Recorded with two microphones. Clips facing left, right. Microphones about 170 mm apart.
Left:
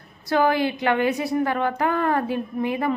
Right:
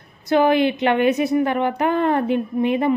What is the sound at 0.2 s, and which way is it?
A woman's voice, 20° right (ahead or behind).